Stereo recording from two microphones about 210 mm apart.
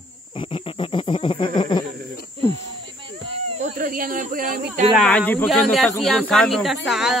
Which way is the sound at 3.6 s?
40° right (ahead or behind).